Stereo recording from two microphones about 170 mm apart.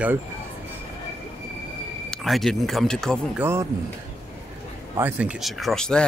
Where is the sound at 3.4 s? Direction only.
15° right (ahead or behind).